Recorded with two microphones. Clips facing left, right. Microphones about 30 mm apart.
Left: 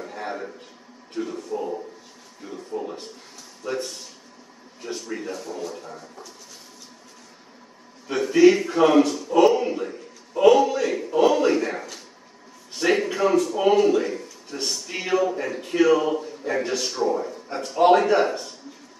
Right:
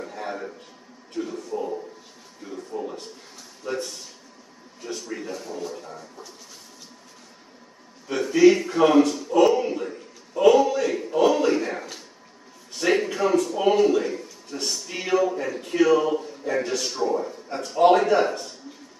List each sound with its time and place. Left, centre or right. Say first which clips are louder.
0.0 s a sound: left 1 dB; centre
1.1 s a man's voice: left 1 dB; centre
3.6 s speech: left 1 dB; centre
5.1 s a man's voice: left 2 dB; centre
8.1 s a man's voice: left 1 dB; centre
12.8 s a man's voice: left 1 dB; centre